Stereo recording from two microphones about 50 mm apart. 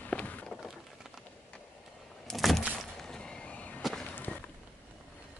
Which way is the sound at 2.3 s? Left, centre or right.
Centre.